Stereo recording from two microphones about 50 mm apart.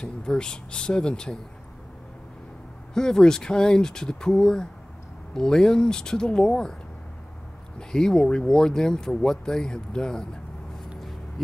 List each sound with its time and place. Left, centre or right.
0.0 s speech: centre
2.9 s speech: centre
7.9 s speech: centre
11.0 s a sound: centre